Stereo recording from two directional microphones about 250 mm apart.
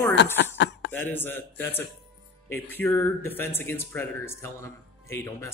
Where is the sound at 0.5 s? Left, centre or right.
Left.